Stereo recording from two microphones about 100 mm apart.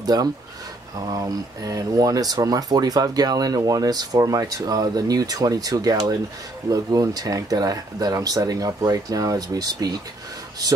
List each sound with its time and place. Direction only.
0.0 s speech: 40° right (ahead or behind)